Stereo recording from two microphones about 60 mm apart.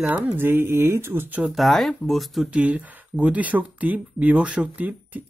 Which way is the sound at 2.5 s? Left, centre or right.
Right.